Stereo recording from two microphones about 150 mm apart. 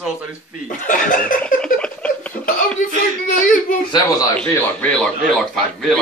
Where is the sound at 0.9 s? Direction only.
60° left (ahead or behind).